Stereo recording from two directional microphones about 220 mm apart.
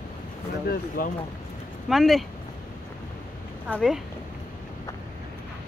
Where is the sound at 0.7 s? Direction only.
40° left (ahead or behind).